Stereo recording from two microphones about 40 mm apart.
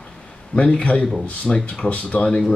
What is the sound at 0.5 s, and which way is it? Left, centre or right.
Speech, left.